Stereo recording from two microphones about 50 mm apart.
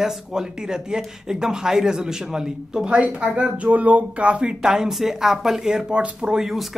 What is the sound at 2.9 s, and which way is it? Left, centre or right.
Speech, right.